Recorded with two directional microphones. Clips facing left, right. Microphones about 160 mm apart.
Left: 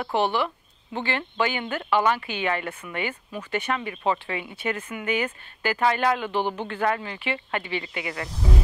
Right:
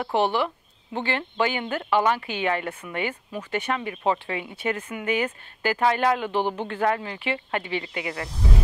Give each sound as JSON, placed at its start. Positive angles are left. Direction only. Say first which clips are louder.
{"t": 0.0, "sound": "speech", "louder": "right 1 dB", "side_deg": -30}
{"t": 6.7, "sound": "speech", "louder": "right 1 dB", "side_deg": -25}